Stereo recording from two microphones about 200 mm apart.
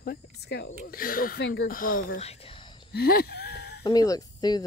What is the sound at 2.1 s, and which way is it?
Whispering, 30° left (ahead or behind).